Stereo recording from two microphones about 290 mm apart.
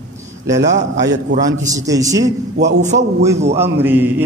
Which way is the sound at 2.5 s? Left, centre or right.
Right.